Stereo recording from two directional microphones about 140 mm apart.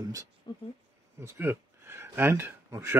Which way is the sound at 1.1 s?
20° right (ahead or behind).